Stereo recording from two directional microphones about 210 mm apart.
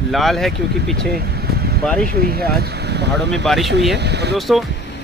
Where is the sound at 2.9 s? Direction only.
55° right (ahead or behind).